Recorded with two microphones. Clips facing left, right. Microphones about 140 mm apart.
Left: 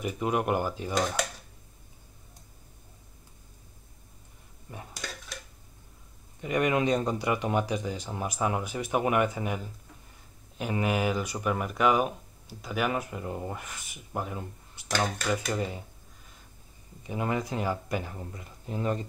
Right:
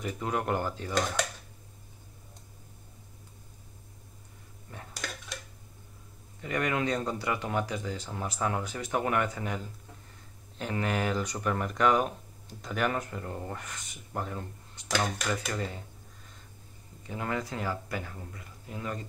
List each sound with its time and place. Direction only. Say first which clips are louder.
0.0 s speech: left 3 dB; 15° left (ahead or behind)
4.7 s dishes: left 3 dB; 15° left (ahead or behind)
6.4 s speech: left 4 dB; 15° left (ahead or behind)
17.1 s speech: left 3 dB; 15° left (ahead or behind)